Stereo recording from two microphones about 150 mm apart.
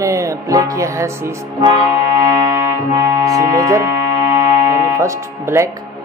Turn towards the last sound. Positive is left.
turn(degrees=-20)  # may be behind; listen again after turning